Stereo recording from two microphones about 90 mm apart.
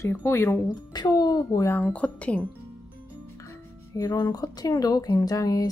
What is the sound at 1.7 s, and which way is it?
Speech, 20° left (ahead or behind).